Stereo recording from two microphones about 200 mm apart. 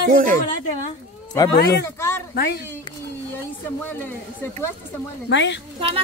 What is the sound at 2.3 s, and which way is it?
Speech, 55° left (ahead or behind).